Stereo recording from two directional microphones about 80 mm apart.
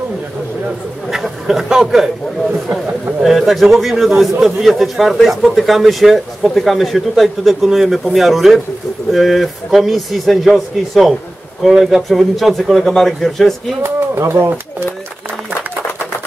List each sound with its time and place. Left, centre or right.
1.1 s a man's voice: centre
3.2 s a man's voice: centre
13.8 s speech: right